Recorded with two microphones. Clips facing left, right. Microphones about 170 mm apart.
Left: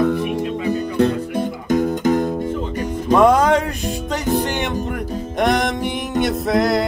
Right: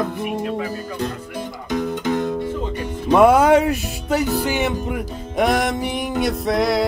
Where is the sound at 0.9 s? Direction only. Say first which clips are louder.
Left 9 dB; 60° left (ahead or behind).